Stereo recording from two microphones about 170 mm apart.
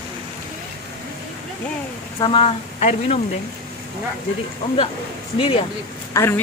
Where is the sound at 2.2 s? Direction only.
35° left (ahead or behind).